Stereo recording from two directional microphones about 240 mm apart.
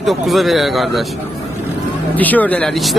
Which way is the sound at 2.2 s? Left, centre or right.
Centre.